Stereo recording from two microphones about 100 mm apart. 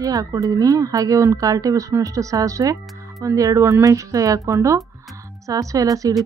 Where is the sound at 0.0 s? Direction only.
35° right (ahead or behind).